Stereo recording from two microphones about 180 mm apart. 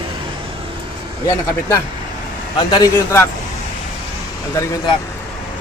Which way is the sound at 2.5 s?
20° left (ahead or behind).